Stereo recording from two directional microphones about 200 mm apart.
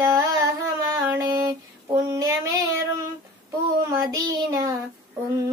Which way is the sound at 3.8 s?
15° right (ahead or behind).